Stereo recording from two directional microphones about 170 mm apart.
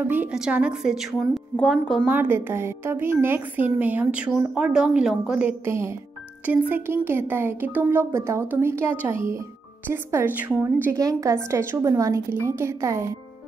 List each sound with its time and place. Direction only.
0.0 s a woman's voice: 10° right (ahead or behind)
2.0 s a woman's voice: 10° right (ahead or behind)